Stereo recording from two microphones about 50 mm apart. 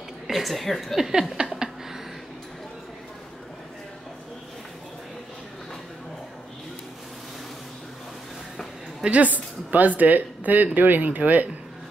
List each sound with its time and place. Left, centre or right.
0.3 s a woman's voice: centre
9.0 s a woman's voice: right